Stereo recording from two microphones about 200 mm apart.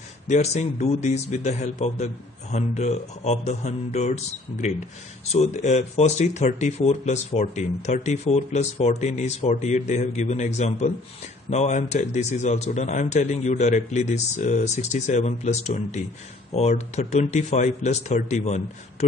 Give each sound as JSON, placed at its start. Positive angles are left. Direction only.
{"t": 0.3, "sound": "speech", "side_deg": 35}